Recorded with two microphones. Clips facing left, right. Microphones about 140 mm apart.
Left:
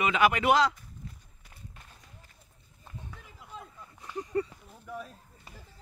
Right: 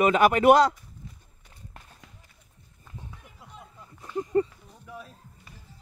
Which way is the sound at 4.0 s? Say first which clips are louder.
Right 6 dB; 25° right (ahead or behind).